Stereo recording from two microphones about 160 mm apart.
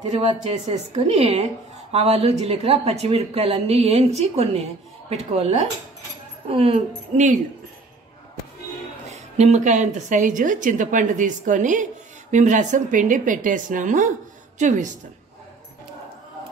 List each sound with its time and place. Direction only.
0.0 s a woman's voice: 45° right (ahead or behind)
9.1 s a woman's voice: 45° right (ahead or behind)